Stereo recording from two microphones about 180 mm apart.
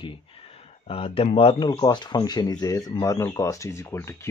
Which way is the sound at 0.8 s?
30° left (ahead or behind).